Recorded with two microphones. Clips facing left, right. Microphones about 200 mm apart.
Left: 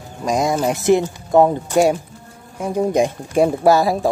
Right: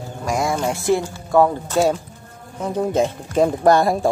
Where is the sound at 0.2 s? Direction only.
20° left (ahead or behind).